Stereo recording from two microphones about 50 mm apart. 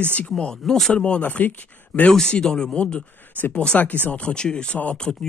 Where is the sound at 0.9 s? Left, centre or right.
Left.